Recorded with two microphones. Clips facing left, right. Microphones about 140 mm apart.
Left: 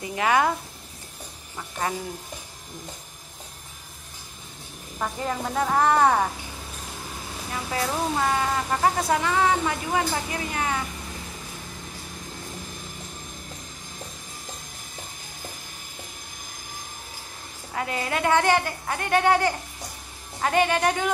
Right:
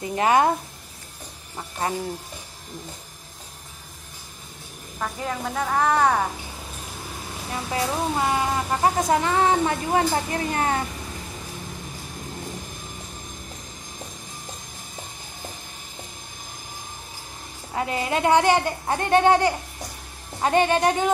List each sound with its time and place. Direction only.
0.0 s speech: 35° right (ahead or behind)
1.6 s a child's voice: 25° right (ahead or behind)
4.9 s a woman's voice: 5° left (ahead or behind)
7.7 s a child's voice: 20° right (ahead or behind)
9.2 s speech: 35° right (ahead or behind)
17.7 s a child's voice: 25° right (ahead or behind)